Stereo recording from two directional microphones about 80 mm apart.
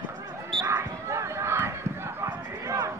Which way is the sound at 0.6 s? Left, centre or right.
Right.